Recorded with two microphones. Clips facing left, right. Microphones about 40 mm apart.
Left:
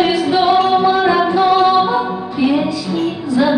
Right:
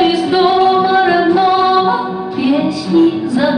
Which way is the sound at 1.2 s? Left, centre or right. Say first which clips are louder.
Right 1 dB; centre.